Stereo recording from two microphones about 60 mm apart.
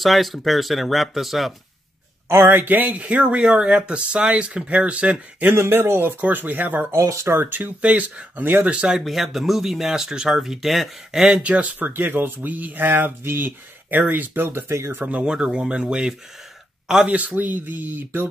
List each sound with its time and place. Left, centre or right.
0.0 s speech: centre
2.2 s speech: right; by 5.1 s centre
5.5 s speech: right
7.0 s speech: right
7.3 s speech: right
8.7 s speech: centre
9.0 s speech: centre
11.4 s speech: right
11.9 s speech: right
15.0 s speech: right
15.3 s speech: centre
17.1 s speech: right